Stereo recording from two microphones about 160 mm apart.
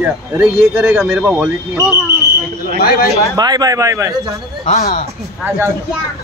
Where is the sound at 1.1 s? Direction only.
15° right (ahead or behind).